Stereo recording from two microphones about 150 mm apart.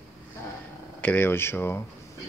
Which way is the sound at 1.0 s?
15° left (ahead or behind).